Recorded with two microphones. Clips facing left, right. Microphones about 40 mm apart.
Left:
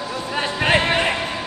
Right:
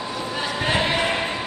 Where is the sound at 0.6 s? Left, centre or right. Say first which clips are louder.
Left 4 dB; left.